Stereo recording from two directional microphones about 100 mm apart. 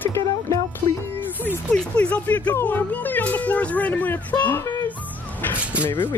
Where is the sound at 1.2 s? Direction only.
20° left (ahead or behind).